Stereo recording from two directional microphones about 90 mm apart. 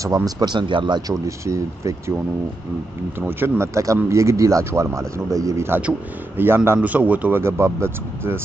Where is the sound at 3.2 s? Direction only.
25° right (ahead or behind).